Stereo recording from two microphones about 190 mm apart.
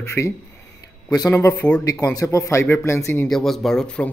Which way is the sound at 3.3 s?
Centre (ahead or behind).